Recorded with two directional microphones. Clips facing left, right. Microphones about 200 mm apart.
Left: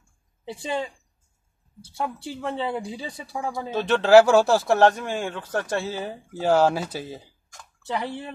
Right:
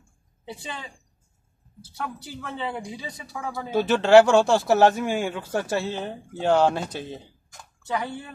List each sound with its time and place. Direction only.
2.0 s speech: 30° left (ahead or behind)
3.7 s speech: 5° right (ahead or behind)
5.9 s speech: 5° left (ahead or behind)